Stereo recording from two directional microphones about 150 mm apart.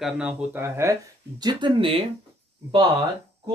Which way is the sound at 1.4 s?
35° right (ahead or behind).